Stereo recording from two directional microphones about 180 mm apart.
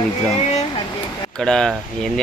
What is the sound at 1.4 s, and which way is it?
Speech, 5° left (ahead or behind).